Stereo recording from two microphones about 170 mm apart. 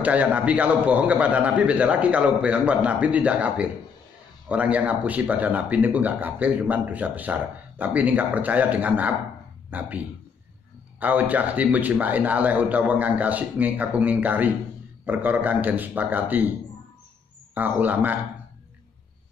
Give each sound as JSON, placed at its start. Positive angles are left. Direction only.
{"t": 0.0, "sound": "speech", "side_deg": -10}
{"t": 17.6, "sound": "speech", "side_deg": -10}